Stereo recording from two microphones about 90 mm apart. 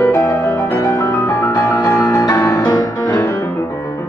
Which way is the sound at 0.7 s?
40° left (ahead or behind).